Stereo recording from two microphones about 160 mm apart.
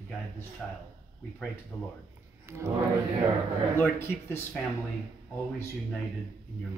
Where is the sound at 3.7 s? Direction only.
15° left (ahead or behind).